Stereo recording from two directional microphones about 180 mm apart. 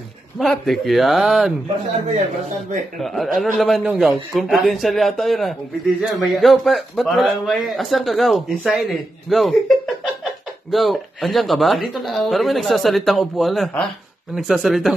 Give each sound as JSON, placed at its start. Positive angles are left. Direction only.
{"t": 0.4, "sound": "a man's voice", "side_deg": 0}
{"t": 3.0, "sound": "a man's voice", "side_deg": 0}